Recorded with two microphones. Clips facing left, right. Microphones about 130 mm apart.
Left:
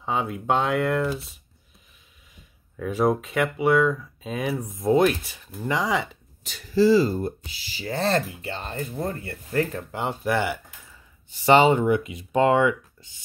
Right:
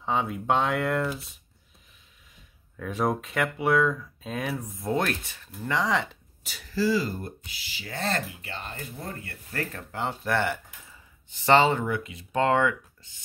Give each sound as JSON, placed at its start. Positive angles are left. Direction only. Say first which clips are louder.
{"t": 0.0, "sound": "speech", "louder": "left 1 dB", "side_deg": 5}
{"t": 2.8, "sound": "speech", "louder": "left 5 dB", "side_deg": 5}
{"t": 4.6, "sound": "speech", "louder": "left 11 dB", "side_deg": 15}
{"t": 6.4, "sound": "speech", "louder": "left 2 dB", "side_deg": -5}
{"t": 6.7, "sound": "speech", "louder": "left 8 dB", "side_deg": 25}